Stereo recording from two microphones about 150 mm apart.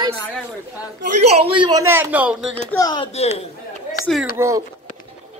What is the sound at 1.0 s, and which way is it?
Speech, 45° right (ahead or behind).